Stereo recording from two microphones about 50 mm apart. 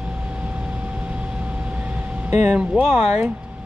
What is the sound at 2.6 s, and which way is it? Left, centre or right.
Speech, right.